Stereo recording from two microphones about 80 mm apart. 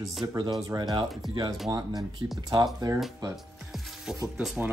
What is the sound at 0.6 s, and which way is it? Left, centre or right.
Speech, right.